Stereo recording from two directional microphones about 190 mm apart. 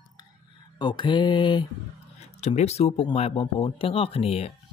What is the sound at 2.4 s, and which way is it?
Speech, 35° left (ahead or behind).